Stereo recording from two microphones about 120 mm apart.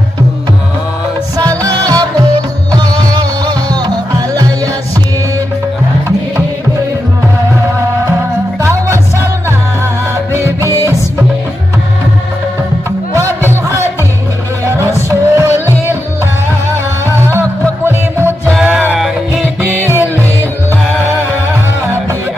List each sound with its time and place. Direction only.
1.6 s music: 30° right (ahead or behind)
10.3 s music: 20° right (ahead or behind)
15.0 s music: 20° right (ahead or behind)
17.8 s music: 15° right (ahead or behind)
18.5 s music: 5° right (ahead or behind)
19.8 s music: 20° right (ahead or behind)